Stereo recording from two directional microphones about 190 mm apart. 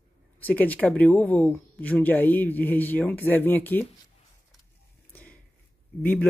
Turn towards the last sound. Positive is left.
turn(degrees=10)  # may be behind; listen again after turning